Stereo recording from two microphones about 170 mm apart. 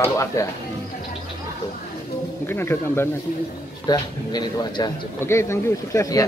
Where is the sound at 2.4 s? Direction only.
15° left (ahead or behind).